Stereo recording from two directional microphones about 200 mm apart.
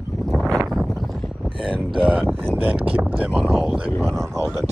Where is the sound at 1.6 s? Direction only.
25° right (ahead or behind).